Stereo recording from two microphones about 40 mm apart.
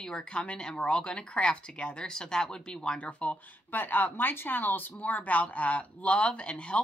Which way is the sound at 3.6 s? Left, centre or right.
Left.